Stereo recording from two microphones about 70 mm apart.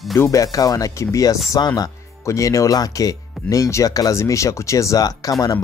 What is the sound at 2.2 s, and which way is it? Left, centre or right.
Speech, left.